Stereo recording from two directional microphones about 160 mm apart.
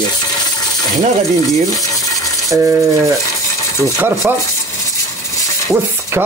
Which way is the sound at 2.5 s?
15° right (ahead or behind).